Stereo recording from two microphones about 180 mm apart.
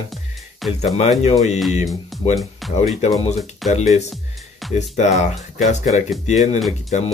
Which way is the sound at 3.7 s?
40° left (ahead or behind).